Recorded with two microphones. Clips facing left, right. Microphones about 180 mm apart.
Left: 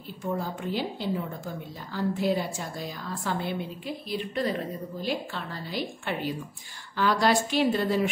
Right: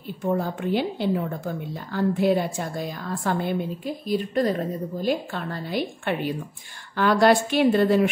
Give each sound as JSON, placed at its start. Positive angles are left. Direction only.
{"t": 0.3, "sound": "a woman's voice", "side_deg": -55}